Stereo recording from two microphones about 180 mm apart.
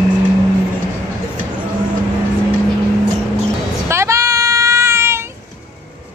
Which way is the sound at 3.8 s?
15° right (ahead or behind).